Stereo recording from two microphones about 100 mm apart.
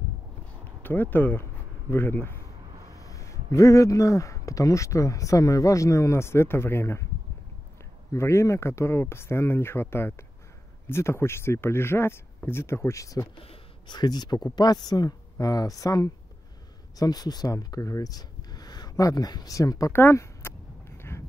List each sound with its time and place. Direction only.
0.8 s speech: 20° left (ahead or behind)
8.1 s speech: 25° left (ahead or behind)
19.9 s speech: 25° left (ahead or behind)